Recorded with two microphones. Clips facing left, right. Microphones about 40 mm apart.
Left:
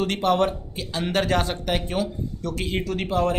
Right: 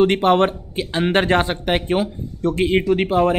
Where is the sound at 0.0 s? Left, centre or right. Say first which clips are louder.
Right 6 dB; right.